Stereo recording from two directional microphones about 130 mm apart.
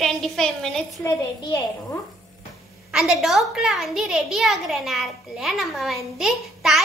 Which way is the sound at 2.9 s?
5° right (ahead or behind).